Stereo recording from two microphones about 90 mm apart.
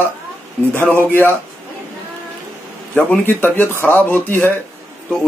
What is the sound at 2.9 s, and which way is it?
Speech, 20° left (ahead or behind).